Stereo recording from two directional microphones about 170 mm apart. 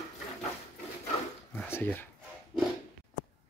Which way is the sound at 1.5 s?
10° left (ahead or behind).